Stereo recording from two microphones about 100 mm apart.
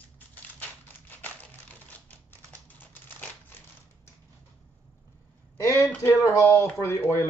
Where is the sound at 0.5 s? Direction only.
15° left (ahead or behind).